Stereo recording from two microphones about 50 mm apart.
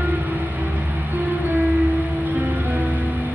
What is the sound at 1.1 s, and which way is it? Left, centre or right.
Music, right.